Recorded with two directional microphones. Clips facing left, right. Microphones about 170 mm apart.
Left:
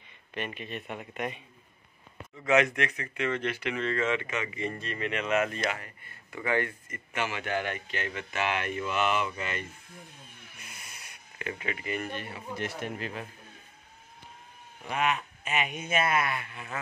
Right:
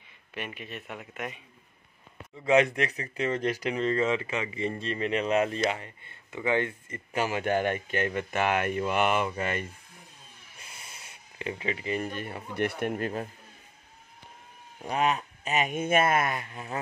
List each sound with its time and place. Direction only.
0.3 s speech: 5° right (ahead or behind)
2.4 s speech: 30° right (ahead or behind); by 9.7 s 50° right (ahead or behind)
10.6 s a sound: 30° right (ahead or behind)
12.1 s speech: 50° right (ahead or behind)
14.8 s speech: 35° right (ahead or behind)